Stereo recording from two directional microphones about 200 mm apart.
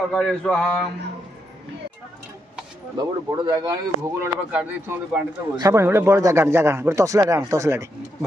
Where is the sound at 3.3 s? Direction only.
15° right (ahead or behind).